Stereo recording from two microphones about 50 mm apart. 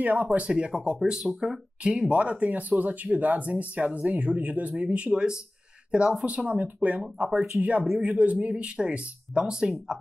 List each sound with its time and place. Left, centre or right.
0.0 s speech: right
0.5 s speech: centre